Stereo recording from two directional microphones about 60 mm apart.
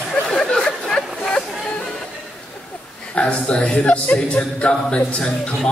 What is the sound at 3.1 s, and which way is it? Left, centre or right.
Speech, centre.